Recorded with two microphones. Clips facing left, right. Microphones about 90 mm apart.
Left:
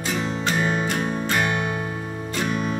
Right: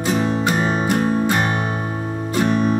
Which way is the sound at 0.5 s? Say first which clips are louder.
Right 4 dB; 30° right (ahead or behind).